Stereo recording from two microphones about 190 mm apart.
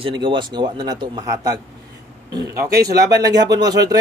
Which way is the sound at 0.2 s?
25° right (ahead or behind).